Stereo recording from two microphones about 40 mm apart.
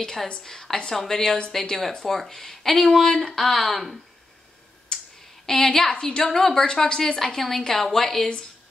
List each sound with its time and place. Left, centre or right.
0.0 s a woman's voice: centre
4.9 s a sound: left
5.5 s a woman's voice: centre
6.9 s a woman's voice: left
7.2 s a woman's voice: centre